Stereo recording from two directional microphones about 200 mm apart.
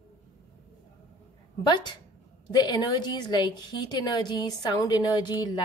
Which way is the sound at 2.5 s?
20° left (ahead or behind).